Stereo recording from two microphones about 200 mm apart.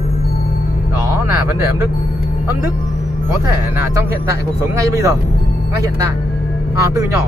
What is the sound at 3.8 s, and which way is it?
Speech, 15° right (ahead or behind).